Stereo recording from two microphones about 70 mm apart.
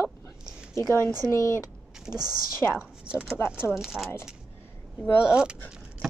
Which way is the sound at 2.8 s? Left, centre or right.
Centre.